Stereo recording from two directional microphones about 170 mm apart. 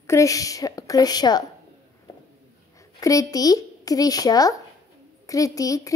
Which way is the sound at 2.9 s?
20° left (ahead or behind).